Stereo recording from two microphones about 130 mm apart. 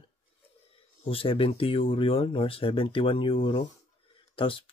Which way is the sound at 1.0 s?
45° left (ahead or behind).